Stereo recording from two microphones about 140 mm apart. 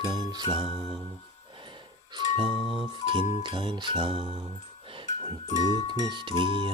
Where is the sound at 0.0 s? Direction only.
35° right (ahead or behind).